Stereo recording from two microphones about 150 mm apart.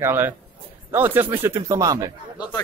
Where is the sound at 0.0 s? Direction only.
15° right (ahead or behind).